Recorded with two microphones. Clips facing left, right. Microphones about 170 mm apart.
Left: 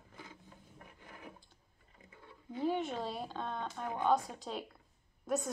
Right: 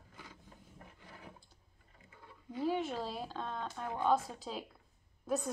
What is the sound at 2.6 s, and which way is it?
Speech, centre (ahead or behind).